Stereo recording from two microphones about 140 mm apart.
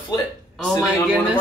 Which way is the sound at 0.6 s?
Centre (ahead or behind).